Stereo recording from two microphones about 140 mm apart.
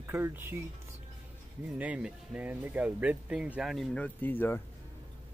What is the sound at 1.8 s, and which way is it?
Speech, 10° right (ahead or behind).